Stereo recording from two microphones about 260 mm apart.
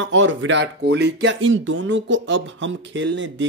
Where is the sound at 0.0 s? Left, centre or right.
Right.